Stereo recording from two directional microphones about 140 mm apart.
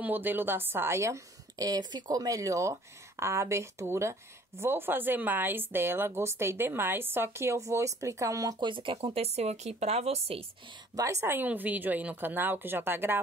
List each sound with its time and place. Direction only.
0.0 s a woman's voice: 15° right (ahead or behind); by 10.4 s 45° right (ahead or behind)
11.0 s speech: 20° right (ahead or behind)